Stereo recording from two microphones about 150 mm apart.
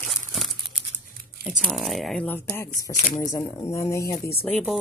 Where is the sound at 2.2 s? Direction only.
15° left (ahead or behind).